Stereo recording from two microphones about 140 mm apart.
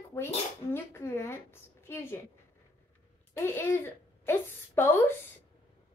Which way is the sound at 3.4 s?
15° left (ahead or behind).